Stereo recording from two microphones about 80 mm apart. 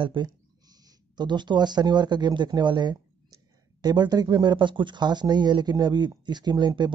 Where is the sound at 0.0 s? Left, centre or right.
Right.